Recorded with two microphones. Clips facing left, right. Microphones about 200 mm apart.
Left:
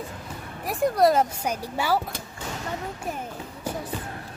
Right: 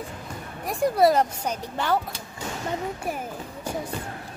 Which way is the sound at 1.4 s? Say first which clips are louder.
Left 1 dB; 10° left (ahead or behind).